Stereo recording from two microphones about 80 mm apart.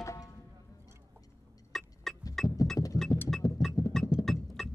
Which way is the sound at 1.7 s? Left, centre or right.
Centre.